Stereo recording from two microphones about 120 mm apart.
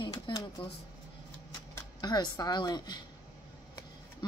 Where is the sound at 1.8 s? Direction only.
35° left (ahead or behind).